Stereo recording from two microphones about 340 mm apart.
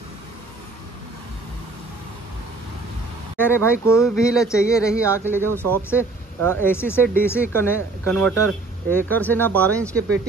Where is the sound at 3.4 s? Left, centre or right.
Centre.